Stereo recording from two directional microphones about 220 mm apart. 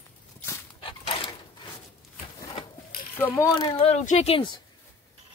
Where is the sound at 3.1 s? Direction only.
10° left (ahead or behind).